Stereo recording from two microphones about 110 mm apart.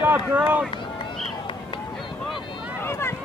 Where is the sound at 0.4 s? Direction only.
10° right (ahead or behind).